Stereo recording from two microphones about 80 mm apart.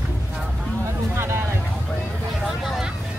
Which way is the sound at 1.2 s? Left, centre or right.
Right.